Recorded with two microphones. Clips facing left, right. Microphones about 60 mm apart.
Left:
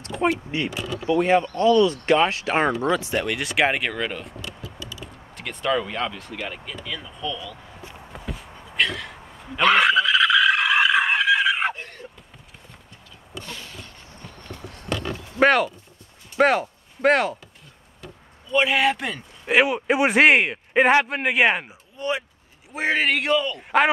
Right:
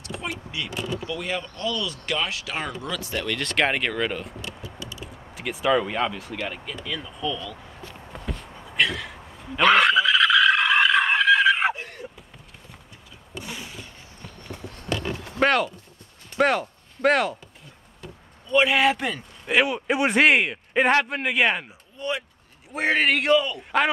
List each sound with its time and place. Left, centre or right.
0.0 s speech: left
3.0 s speech: centre
7.9 s a sound: centre
13.4 s a sound: centre
14.2 s run: centre
15.3 s pig: centre
16.3 s speech: centre
18.5 s speech: centre
19.4 s speech: centre
21.6 s speech: centre